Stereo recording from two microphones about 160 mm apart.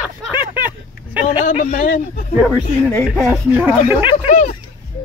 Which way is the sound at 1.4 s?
50° left (ahead or behind).